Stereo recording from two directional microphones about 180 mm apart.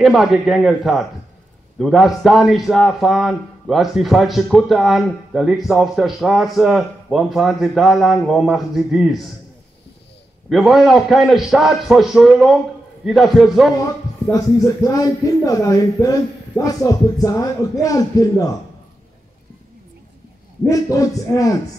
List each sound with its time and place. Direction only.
0.0 s a man's voice: centre (ahead or behind)
10.5 s a man's voice: centre (ahead or behind)
14.3 s speech: 20° left (ahead or behind)
20.6 s speech: 20° left (ahead or behind)